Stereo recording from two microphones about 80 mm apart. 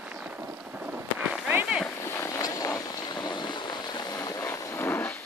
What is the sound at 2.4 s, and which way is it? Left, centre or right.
Vehicle, left.